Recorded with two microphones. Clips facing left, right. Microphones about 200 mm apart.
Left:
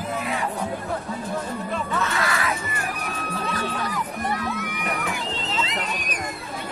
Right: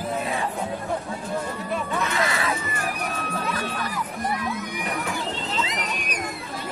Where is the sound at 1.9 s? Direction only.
20° right (ahead or behind).